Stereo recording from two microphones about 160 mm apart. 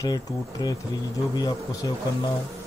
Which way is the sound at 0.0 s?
25° left (ahead or behind).